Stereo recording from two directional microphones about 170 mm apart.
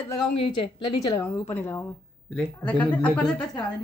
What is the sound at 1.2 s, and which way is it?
Speech, 10° left (ahead or behind).